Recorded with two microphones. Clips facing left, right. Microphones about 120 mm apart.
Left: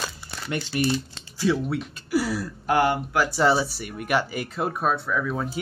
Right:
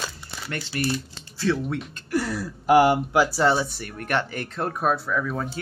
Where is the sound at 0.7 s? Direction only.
25° left (ahead or behind).